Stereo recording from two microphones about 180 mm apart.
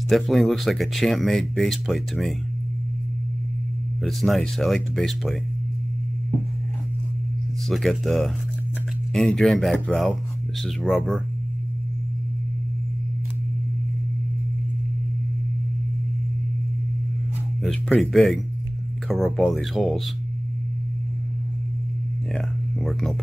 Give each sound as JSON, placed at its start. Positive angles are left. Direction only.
{"t": 0.1, "sound": "speech", "side_deg": 0}
{"t": 4.0, "sound": "speech", "side_deg": 0}
{"t": 7.6, "sound": "speech", "side_deg": 0}
{"t": 17.6, "sound": "speech", "side_deg": 5}
{"t": 22.3, "sound": "a sound", "side_deg": 0}